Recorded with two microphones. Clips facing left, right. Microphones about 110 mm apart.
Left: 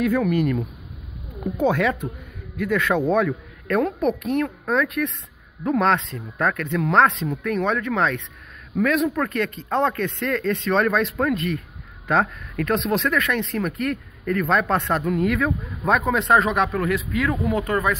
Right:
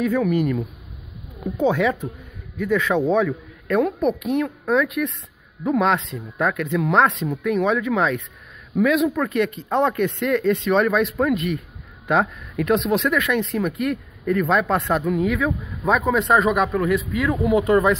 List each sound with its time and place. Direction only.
0.0 s speech: centre (ahead or behind)
9.9 s speech: 20° right (ahead or behind)
10.2 s a man's voice: 5° right (ahead or behind)
12.7 s speech: centre (ahead or behind)
17.3 s speech: 15° right (ahead or behind)